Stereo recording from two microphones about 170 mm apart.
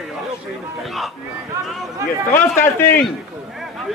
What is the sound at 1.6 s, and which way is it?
Speech, 15° right (ahead or behind).